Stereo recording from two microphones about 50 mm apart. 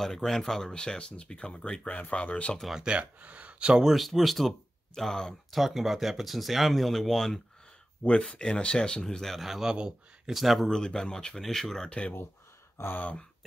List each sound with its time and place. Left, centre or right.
0.0 s speech: centre; by 2.5 s left
2.7 s speech: centre
3.8 s speech: centre
5.5 s speech: centre
8.0 s speech: left
9.2 s speech: centre
10.7 s speech: centre
12.9 s speech: left